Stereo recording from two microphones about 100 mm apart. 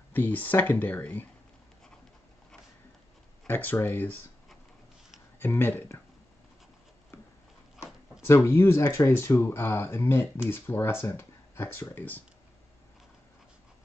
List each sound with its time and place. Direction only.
0.1 s speech: 15° left (ahead or behind)
3.4 s speech: 20° left (ahead or behind)
5.4 s speech: 20° left (ahead or behind)
8.2 s speech: 25° left (ahead or behind)